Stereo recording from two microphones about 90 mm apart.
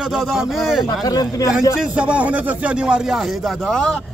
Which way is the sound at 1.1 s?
40° left (ahead or behind).